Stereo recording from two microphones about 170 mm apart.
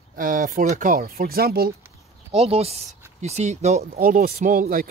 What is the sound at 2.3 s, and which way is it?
Speech, 35° right (ahead or behind).